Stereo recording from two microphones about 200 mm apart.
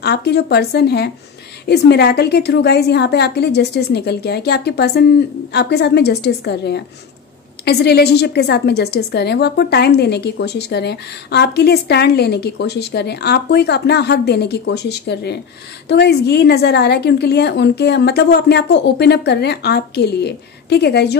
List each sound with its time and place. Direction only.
0.0 s a woman's voice: 55° left (ahead or behind)